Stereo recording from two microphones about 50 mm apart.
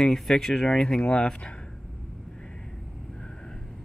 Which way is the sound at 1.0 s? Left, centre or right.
Left.